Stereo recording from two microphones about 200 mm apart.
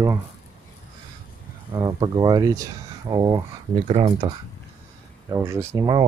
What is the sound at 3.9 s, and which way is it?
Speech, 30° right (ahead or behind).